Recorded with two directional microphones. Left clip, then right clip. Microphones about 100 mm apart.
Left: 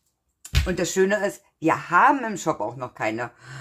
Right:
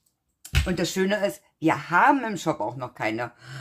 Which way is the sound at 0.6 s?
20° right (ahead or behind).